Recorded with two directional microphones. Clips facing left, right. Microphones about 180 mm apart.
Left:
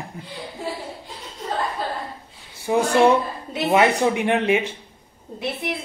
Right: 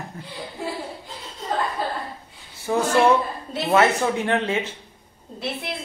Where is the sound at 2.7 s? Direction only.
15° left (ahead or behind).